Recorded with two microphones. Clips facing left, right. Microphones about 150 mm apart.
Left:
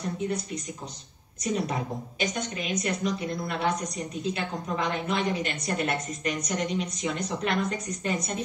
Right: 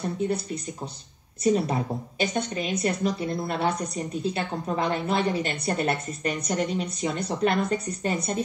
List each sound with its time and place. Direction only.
1.4 s a woman's voice: 30° right (ahead or behind)